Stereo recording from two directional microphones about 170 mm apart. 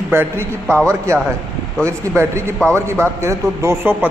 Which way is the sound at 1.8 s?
15° right (ahead or behind).